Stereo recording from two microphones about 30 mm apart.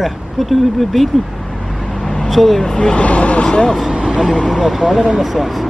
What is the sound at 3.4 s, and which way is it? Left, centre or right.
Speech, left.